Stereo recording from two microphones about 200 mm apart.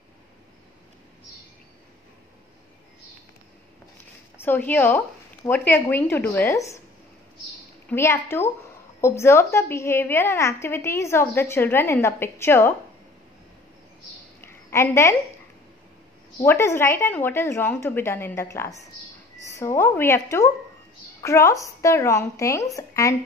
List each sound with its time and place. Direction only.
4.4 s a woman's voice: 10° left (ahead or behind)
7.9 s a woman's voice: 10° left (ahead or behind)
14.4 s a sound: 15° left (ahead or behind)
16.3 s a woman's voice: 15° left (ahead or behind)